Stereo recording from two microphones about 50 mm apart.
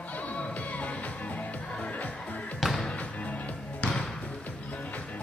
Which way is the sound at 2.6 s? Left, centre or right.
Centre.